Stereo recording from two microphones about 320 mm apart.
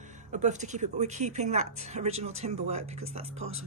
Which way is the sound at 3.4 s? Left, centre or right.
Right.